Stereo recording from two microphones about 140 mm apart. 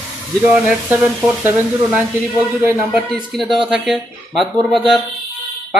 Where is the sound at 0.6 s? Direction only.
10° right (ahead or behind).